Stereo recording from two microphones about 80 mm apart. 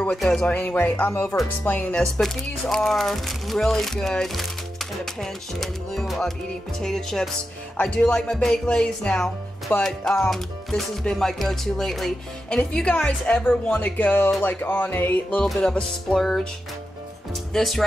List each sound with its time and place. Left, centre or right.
0.0 s speech: centre
0.5 s music: left
2.0 s a woman's voice: centre; by 14.3 s left
14.4 s music: left
15.6 s a woman's voice: centre
17.5 s speech: centre